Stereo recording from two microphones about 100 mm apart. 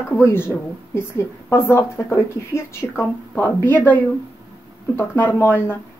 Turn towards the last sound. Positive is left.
turn(degrees=20)  # may be behind; listen again after turning